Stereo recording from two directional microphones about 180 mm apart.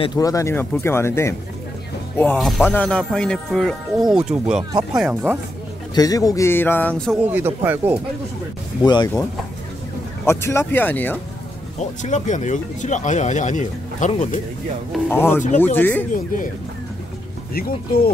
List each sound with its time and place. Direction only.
0.0 s speech: 20° left (ahead or behind); by 5.4 s 5° right (ahead or behind)
5.9 s speech: 20° left (ahead or behind)
7.3 s speech: 10° right (ahead or behind)
8.8 s speech: 25° left (ahead or behind)
10.2 s speech: 15° left (ahead or behind)
12.0 s speech: 45° left (ahead or behind)
14.9 s speech: 10° left (ahead or behind)
17.6 s speech: 55° left (ahead or behind)